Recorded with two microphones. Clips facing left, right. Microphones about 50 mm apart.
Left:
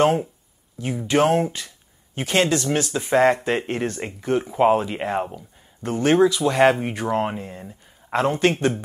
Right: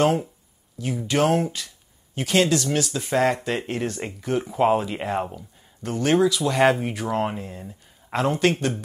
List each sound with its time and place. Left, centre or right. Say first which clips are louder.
0.0 s speech: left 2 dB; centre
5.9 s speech: left 3 dB; centre